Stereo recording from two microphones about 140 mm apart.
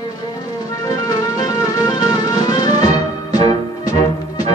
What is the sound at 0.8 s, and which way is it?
Music, 25° left (ahead or behind).